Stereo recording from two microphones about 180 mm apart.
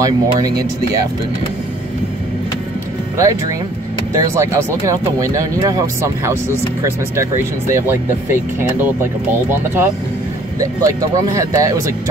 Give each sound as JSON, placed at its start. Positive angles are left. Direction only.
{"t": 0.0, "sound": "speech", "side_deg": -20}
{"t": 3.2, "sound": "speech", "side_deg": -20}
{"t": 7.7, "sound": "speech", "side_deg": -10}